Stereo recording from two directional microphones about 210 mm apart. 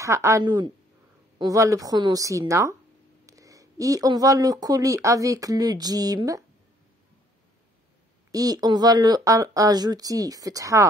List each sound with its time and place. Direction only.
0.0 s speech: 15° right (ahead or behind)
8.3 s speech: 15° right (ahead or behind)